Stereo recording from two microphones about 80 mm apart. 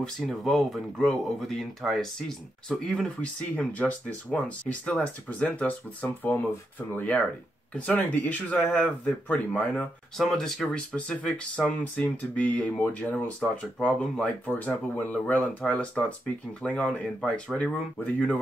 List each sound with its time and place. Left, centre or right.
0.0 s speech: centre
10.1 s speech: centre
14.4 s speech: left